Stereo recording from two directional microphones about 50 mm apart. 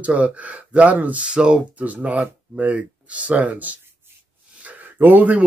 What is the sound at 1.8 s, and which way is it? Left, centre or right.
A man's voice, right.